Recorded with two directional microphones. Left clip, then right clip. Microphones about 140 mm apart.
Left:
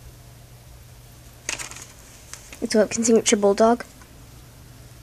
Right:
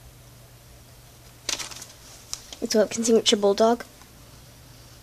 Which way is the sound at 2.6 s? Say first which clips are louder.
Left 2 dB; centre (ahead or behind).